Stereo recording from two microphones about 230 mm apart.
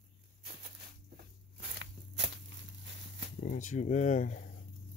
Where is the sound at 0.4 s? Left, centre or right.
Right.